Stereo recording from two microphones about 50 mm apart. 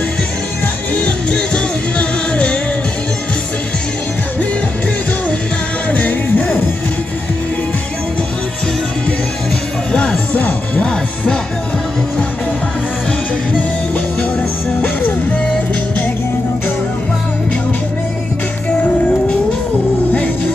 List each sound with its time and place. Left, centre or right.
0.9 s music: left
5.9 s music: left
9.9 s music: left
14.8 s music: left